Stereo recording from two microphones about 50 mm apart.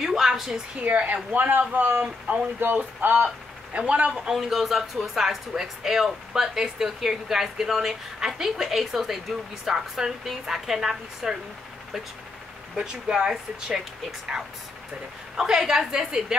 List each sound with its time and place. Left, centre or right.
0.0 s a sound: centre
0.8 s speech: right
2.6 s speech: right
3.7 s a man's voice: right
4.2 s speech: centre
12.7 s speech: centre